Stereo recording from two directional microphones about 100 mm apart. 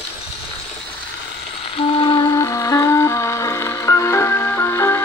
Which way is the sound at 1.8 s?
60° left (ahead or behind).